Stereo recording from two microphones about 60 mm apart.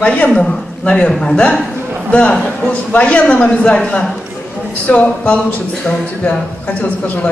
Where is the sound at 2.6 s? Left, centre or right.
Left.